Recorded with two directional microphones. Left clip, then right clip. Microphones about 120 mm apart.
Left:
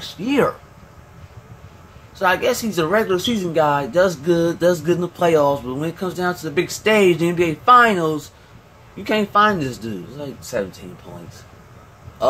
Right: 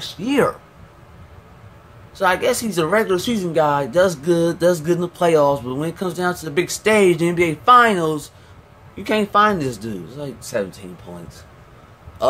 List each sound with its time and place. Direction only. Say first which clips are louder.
0.0 s speech: even; 15° right (ahead or behind)
2.1 s speech: even; 20° right (ahead or behind)